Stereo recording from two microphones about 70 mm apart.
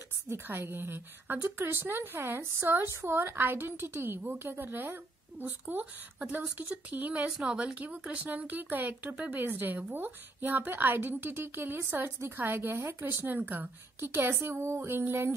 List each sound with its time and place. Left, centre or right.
0.3 s a woman's voice: right